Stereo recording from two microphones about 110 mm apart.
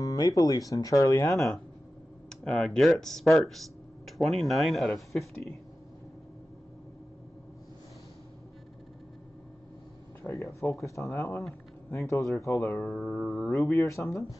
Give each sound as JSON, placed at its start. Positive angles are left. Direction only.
{"t": 0.0, "sound": "speech", "side_deg": 30}
{"t": 1.3, "sound": "speech", "side_deg": 0}
{"t": 10.2, "sound": "speech", "side_deg": 20}
{"t": 13.2, "sound": "speech", "side_deg": 5}
{"t": 13.5, "sound": "speech", "side_deg": 25}